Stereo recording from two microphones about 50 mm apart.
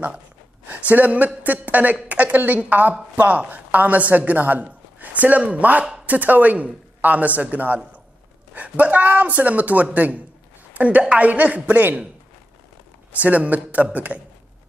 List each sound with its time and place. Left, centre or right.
0.7 s a man's voice: right
13.2 s speech: right